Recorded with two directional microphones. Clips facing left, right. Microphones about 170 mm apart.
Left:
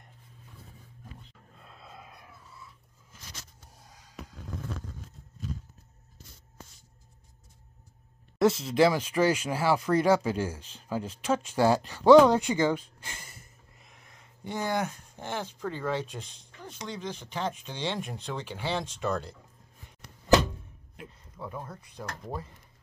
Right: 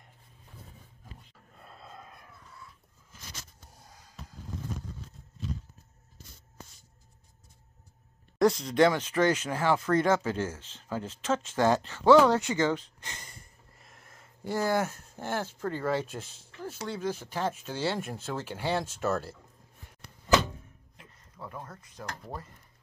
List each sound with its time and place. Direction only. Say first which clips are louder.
1.6 s dog: right 1 dB; centre (ahead or behind)
8.4 s speech: even; 5° left (ahead or behind)
21.4 s speech: left 3 dB; 10° left (ahead or behind)